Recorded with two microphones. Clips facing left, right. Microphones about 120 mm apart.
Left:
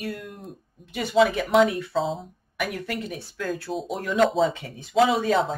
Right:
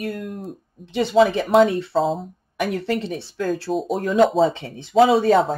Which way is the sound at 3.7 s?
Centre (ahead or behind).